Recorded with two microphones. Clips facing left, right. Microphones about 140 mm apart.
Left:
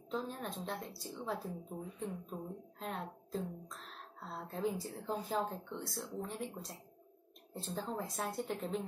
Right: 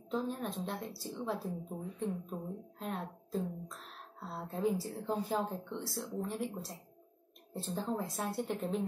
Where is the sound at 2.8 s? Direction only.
5° right (ahead or behind).